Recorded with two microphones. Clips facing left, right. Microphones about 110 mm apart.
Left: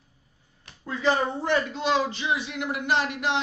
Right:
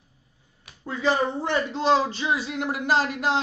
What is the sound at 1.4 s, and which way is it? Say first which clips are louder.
Speech: right 1 dB; 30° right (ahead or behind).